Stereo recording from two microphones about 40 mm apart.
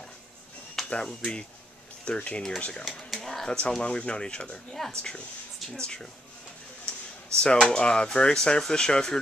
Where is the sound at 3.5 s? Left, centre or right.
Left.